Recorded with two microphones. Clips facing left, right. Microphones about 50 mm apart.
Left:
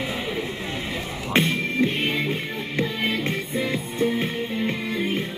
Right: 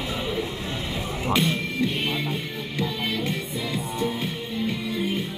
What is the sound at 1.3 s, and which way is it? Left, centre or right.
Music, left.